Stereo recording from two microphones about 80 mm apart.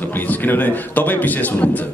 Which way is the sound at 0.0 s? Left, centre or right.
Left.